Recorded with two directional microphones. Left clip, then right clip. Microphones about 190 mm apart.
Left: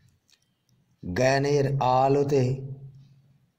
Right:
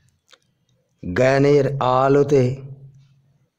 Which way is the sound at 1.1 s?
25° right (ahead or behind).